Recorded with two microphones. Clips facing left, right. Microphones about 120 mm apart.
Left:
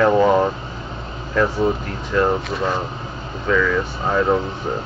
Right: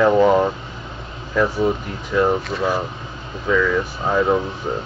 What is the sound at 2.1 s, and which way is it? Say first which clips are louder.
Speech: right 1 dB; 5° right (ahead or behind).